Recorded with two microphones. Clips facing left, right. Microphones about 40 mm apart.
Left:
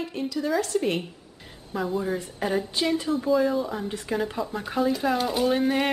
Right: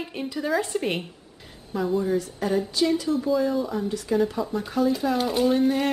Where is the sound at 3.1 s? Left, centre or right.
Centre.